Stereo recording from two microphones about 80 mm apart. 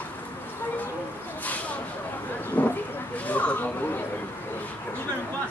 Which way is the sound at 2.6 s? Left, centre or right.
Centre.